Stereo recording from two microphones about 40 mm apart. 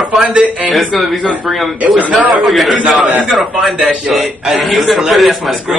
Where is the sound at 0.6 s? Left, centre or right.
Centre.